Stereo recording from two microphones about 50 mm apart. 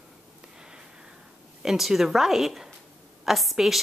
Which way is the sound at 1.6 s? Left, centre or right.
Centre.